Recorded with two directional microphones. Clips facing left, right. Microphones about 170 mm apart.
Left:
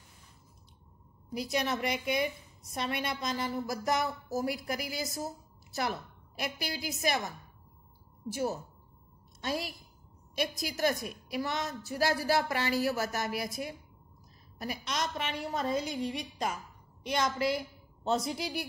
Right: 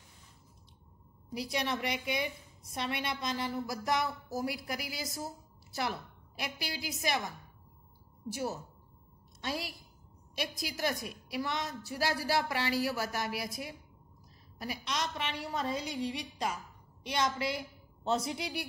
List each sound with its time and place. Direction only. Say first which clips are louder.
1.3 s a woman's voice: left 2 dB; 45° left (ahead or behind)
8.3 s a woman's voice: left 3 dB; 45° left (ahead or behind)